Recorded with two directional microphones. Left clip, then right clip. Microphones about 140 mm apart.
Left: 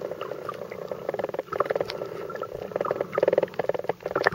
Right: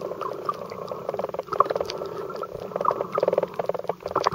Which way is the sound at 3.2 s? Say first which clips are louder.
Even; 15° left (ahead or behind).